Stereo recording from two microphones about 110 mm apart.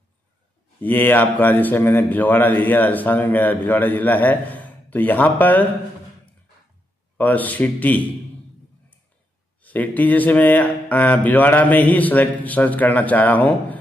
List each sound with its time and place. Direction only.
0.7 s a man's voice: 20° left (ahead or behind)
7.2 s a man's voice: 15° left (ahead or behind)
9.6 s a man's voice: 15° left (ahead or behind)